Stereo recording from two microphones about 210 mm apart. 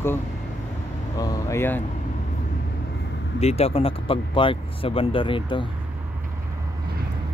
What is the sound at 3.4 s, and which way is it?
Speech, 30° left (ahead or behind).